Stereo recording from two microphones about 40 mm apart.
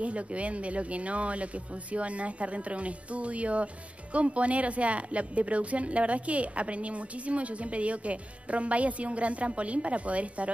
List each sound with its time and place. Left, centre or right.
0.0 s speech: right